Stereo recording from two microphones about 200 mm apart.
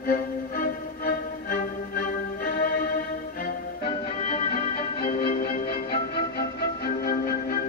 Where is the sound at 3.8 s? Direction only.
30° left (ahead or behind).